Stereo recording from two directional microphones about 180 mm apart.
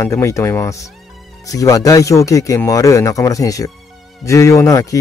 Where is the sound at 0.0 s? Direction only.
15° left (ahead or behind).